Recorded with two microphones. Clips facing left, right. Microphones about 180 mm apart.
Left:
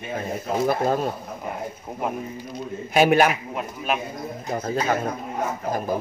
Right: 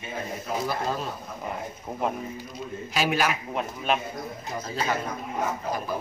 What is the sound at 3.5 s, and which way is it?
Speech, 5° left (ahead or behind).